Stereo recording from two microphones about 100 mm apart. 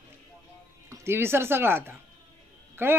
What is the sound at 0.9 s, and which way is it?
A man's voice, 25° right (ahead or behind).